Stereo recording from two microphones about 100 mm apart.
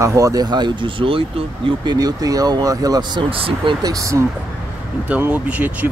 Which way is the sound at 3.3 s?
65° right (ahead or behind).